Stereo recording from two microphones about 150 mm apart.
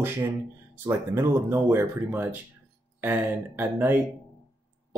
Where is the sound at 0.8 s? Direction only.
15° right (ahead or behind).